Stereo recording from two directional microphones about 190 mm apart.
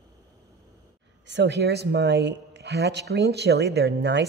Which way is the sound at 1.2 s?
65° right (ahead or behind).